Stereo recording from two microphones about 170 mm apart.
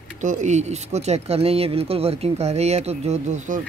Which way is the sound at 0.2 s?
45° right (ahead or behind).